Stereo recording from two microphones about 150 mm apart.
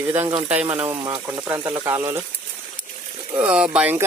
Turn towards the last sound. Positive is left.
turn(degrees=-10)  # may be behind; listen again after turning